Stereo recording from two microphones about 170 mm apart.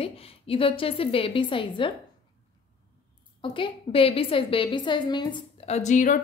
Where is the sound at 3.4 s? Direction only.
30° left (ahead or behind).